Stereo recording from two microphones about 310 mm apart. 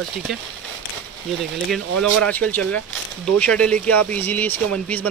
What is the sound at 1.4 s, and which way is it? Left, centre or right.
Speech, centre.